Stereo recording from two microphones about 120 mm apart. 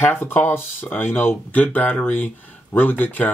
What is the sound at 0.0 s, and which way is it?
Speech, 15° left (ahead or behind).